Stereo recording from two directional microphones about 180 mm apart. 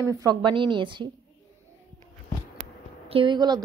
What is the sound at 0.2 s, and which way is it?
Speech, 25° right (ahead or behind).